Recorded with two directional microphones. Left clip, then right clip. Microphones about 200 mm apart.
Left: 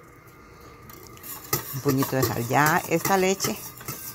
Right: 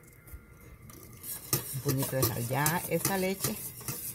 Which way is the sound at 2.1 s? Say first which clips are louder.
Left 9 dB; 15° left (ahead or behind).